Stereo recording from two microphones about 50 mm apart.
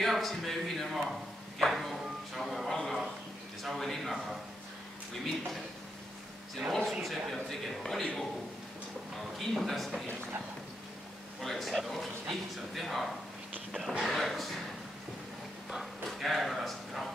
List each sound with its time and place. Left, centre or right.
0.0 s speech: centre
1.6 s music: centre
3.6 s speech: centre
6.9 s speech: centre
9.4 s speech: centre
11.4 s speech: centre
15.8 s a sound: centre